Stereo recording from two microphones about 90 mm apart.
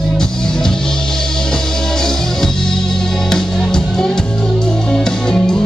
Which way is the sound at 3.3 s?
5° left (ahead or behind).